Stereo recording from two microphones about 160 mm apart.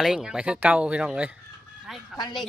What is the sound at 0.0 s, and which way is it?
Speech, 5° right (ahead or behind).